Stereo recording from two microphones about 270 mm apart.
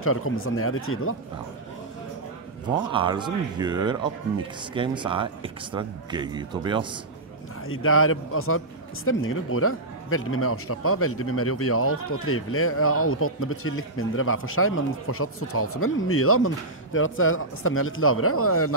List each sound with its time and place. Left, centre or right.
0.0 s a man's voice: left
2.9 s speech: centre
7.6 s a man's voice: left